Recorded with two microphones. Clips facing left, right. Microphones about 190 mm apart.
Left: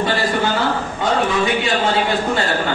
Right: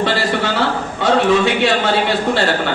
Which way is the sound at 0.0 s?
75° right (ahead or behind).